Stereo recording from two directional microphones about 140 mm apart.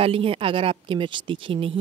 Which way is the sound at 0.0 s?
40° right (ahead or behind).